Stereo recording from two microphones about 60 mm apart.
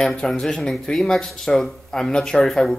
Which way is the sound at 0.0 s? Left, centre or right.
Centre.